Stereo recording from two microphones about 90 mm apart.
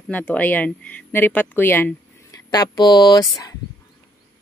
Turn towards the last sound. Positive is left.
turn(degrees=45)  # may be behind; listen again after turning